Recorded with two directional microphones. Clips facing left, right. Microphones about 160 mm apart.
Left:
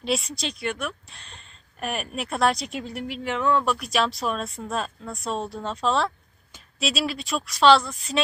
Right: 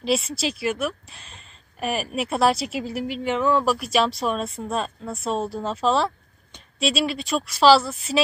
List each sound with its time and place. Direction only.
0.0 s a woman's voice: centre (ahead or behind)